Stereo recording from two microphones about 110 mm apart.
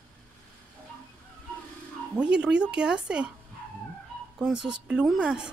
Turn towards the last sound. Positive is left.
turn(degrees=-10)  # may be behind; listen again after turning